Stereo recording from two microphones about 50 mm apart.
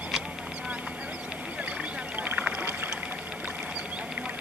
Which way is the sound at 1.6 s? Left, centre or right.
Right.